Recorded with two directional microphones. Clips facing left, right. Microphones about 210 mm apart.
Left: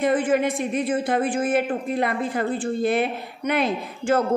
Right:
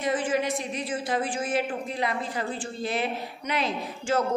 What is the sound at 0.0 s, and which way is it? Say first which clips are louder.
Speech: left 6 dB; 55° left (ahead or behind).